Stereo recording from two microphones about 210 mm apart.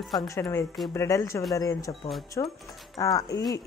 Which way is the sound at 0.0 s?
Centre (ahead or behind).